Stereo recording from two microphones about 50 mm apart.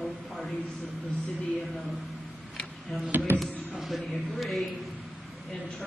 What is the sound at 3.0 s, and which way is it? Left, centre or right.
Speech, right.